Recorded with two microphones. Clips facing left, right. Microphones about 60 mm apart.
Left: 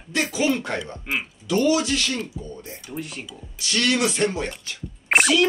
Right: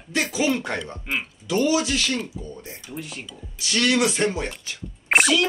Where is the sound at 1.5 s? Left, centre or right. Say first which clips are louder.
Left 1 dB; centre.